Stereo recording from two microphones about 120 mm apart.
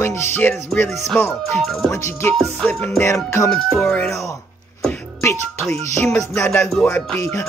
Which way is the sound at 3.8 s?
10° left (ahead or behind).